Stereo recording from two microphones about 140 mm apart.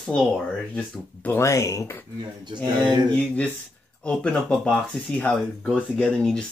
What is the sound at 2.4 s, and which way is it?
Speech, 30° right (ahead or behind).